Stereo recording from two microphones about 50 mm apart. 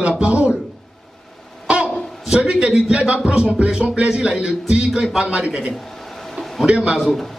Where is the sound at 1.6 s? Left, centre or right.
Right.